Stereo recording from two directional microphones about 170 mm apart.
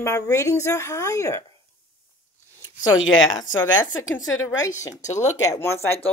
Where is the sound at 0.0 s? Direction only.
20° left (ahead or behind).